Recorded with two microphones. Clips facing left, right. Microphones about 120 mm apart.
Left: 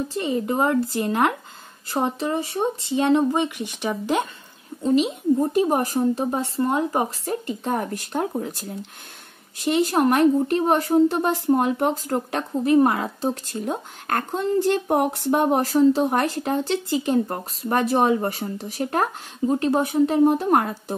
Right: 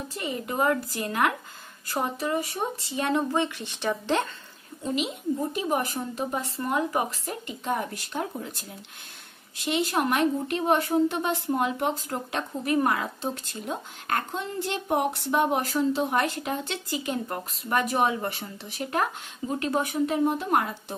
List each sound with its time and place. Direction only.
0.1 s speech: 30° left (ahead or behind); by 4.3 s 10° left (ahead or behind)
4.8 s speech: 35° left (ahead or behind)
12.6 s speech: 25° left (ahead or behind)
20.2 s speech: 45° left (ahead or behind)